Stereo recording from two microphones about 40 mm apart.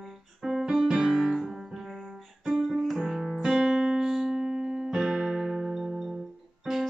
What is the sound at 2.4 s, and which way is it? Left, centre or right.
Music, centre.